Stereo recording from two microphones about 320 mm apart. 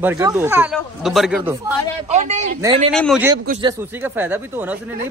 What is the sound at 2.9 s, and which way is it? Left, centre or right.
Speech, centre.